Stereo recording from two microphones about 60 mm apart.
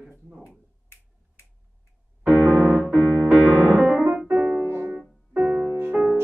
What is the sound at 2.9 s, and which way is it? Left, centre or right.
Piano, centre.